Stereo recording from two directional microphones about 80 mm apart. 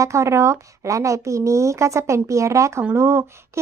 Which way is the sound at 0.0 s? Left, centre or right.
Right.